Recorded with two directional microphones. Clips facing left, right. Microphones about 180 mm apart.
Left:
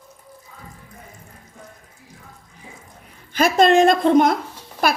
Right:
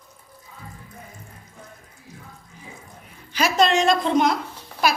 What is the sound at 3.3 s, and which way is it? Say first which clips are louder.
Speech: left 4 dB; 50° left (ahead or behind).